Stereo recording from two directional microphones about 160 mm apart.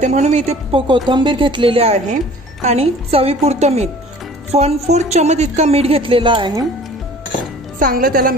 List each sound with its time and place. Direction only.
0.0 s speech: 50° right (ahead or behind); by 6.6 s 30° right (ahead or behind)
7.8 s a woman's voice: 65° right (ahead or behind)